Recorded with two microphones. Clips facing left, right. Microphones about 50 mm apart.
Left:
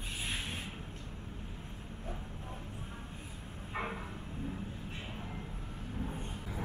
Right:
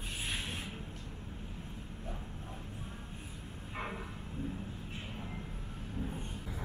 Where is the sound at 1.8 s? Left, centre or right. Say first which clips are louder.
Left 1 dB; centre.